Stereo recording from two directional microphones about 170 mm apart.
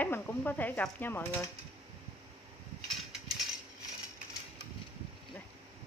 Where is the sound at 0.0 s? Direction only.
10° left (ahead or behind).